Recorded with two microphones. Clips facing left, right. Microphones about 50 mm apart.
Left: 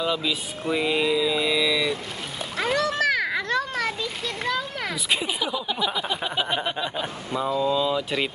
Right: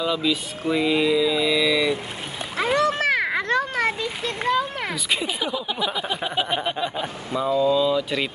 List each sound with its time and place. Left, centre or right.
0.0 s mantra: centre
1.7 s a sound: centre
2.5 s a child's voice: right
4.9 s mantra: centre
5.4 s a sound: centre
5.9 s mantra: centre
7.3 s speech: centre